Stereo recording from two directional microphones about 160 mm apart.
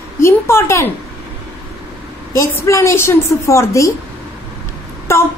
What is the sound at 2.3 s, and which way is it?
A woman's voice, 20° left (ahead or behind).